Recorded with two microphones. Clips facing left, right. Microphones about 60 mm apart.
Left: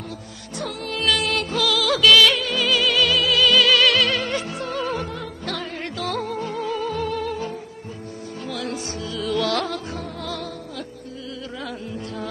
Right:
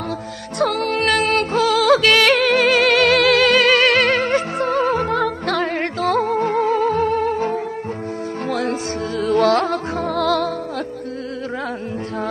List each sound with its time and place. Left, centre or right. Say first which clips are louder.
0.6 s music: right 11 dB; right
0.9 s music: right 2 dB; right
5.1 s music: right 11 dB; right
10.1 s music: right 13 dB; right